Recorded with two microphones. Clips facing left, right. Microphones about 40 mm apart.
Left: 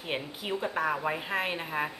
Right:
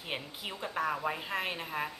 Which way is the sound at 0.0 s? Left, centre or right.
Centre.